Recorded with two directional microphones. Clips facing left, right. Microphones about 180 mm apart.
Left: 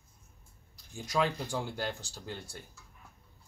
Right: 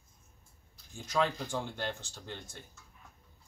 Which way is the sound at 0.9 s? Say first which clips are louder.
Left 1 dB; 10° left (ahead or behind).